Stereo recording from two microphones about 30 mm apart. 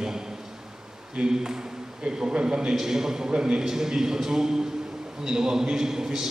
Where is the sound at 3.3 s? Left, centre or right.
Right.